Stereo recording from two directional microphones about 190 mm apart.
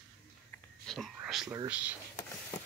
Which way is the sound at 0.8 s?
Centre (ahead or behind).